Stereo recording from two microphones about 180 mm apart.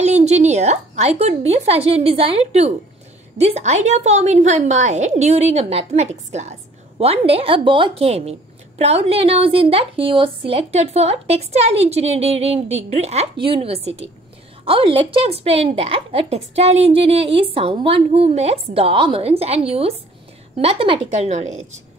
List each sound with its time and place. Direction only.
0.0 s a woman's voice: 40° right (ahead or behind)